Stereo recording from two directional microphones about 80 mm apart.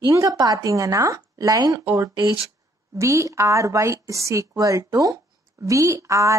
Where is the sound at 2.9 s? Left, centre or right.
Right.